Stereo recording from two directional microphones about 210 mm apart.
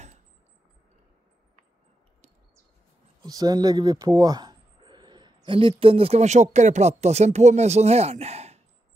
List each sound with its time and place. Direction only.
3.2 s a man's voice: 20° right (ahead or behind)